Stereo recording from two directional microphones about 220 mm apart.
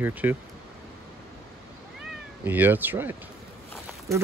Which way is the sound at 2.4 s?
10° right (ahead or behind).